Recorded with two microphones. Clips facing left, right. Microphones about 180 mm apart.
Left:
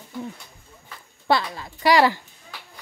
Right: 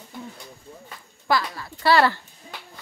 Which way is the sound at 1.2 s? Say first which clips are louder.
Left 2 dB; 25° left (ahead or behind).